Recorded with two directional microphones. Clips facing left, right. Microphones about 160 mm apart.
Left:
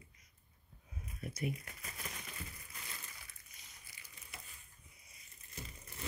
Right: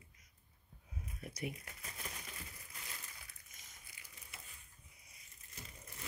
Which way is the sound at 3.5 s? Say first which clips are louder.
Even; 45° right (ahead or behind).